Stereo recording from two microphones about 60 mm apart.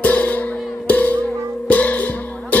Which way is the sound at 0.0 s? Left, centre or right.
Left.